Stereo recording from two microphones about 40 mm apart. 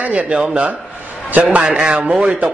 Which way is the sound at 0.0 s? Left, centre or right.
Right.